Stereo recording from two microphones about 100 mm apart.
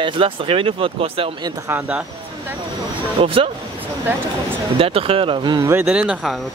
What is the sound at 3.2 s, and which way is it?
Speech, 65° right (ahead or behind).